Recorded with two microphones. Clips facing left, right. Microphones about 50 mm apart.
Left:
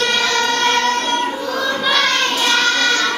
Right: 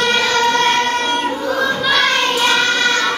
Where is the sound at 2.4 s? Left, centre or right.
Centre.